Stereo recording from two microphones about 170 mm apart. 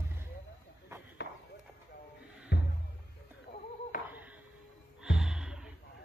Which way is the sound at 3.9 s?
55° left (ahead or behind).